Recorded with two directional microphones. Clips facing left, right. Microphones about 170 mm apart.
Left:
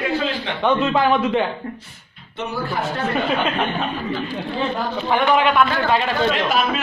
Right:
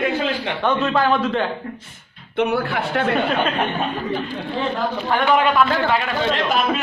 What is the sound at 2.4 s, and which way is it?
Speech, 65° right (ahead or behind).